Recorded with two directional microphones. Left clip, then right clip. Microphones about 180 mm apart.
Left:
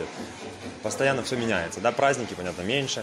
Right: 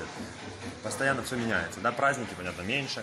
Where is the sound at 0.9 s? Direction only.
35° left (ahead or behind).